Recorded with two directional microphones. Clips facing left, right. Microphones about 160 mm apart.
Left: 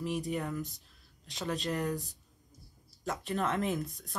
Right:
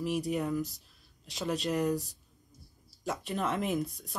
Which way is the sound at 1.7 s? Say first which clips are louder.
Right 5 dB; 20° right (ahead or behind).